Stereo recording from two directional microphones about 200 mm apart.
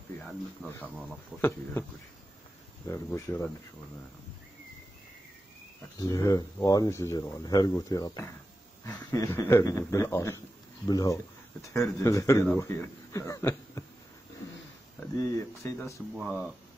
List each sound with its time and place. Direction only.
0.2 s speech: 5° left (ahead or behind)
1.4 s speech: 10° left (ahead or behind)
2.9 s speech: 10° left (ahead or behind)
5.9 s speech: 15° left (ahead or behind)
15.1 s speech: 15° left (ahead or behind)
16.2 s speech: 5° right (ahead or behind)